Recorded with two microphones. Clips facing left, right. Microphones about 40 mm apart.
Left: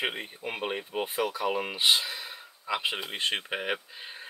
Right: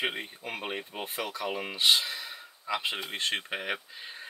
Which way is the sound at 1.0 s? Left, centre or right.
Centre.